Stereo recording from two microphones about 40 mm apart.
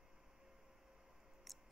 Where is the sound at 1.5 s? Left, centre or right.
Centre.